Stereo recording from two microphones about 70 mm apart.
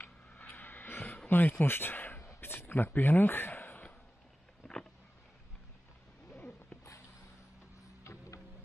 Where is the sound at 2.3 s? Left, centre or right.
Left.